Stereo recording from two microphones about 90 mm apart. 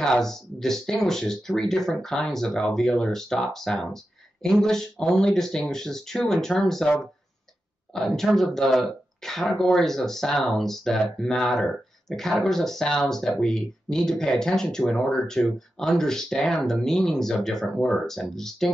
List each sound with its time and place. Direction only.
0.0 s speech: 5° left (ahead or behind)